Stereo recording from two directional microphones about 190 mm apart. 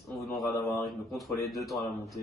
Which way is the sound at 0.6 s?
15° left (ahead or behind).